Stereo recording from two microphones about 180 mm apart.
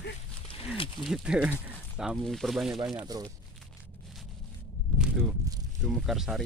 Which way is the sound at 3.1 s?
20° right (ahead or behind).